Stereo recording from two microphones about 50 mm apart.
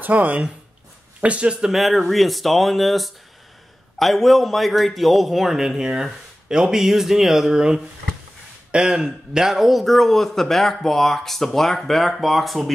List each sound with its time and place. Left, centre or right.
0.0 s speech: right
1.6 s speech: centre